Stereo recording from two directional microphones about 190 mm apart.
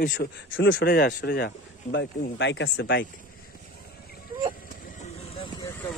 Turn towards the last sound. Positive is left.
turn(degrees=10)  # may be behind; listen again after turning